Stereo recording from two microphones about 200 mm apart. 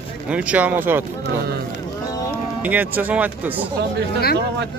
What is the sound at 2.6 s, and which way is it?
Speech, 10° right (ahead or behind).